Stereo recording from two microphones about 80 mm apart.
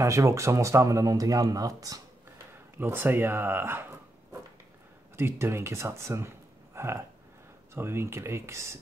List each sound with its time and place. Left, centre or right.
0.0 s speech: right
2.8 s speech: right
5.1 s speech: right